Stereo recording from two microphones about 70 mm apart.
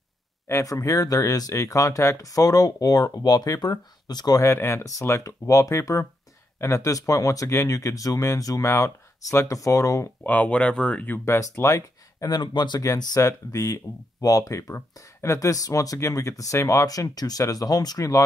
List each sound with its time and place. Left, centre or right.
0.5 s speech: left
1.5 s speech: left
4.4 s speech: left
8.6 s speech: left
10.2 s speech: left
11.2 s speech: left
12.4 s speech: left
12.8 s speech: left